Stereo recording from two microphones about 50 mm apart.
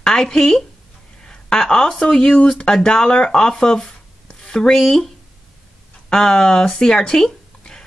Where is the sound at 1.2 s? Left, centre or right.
Centre.